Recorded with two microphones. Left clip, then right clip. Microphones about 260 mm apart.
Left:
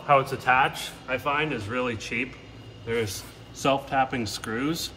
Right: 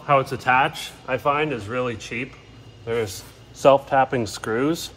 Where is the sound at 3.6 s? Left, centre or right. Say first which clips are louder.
Right 8 dB; centre.